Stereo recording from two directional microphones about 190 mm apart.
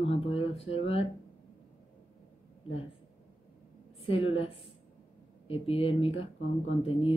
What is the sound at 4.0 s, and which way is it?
A woman's voice, 30° left (ahead or behind).